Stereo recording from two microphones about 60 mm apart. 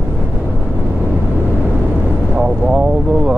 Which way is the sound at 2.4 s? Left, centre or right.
Centre.